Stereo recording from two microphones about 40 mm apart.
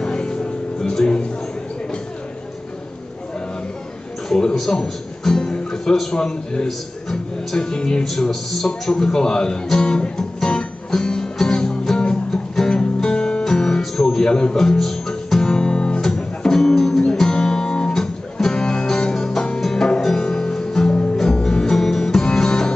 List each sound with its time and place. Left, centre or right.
0.0 s music: left
4.3 s a sound: centre
4.6 s a man's voice: centre
5.2 s music: centre
7.5 s music: centre
8.0 s a man's voice: centre
10.1 s music: centre
12.7 s music: centre
14.3 s guitar: centre
21.2 s music: centre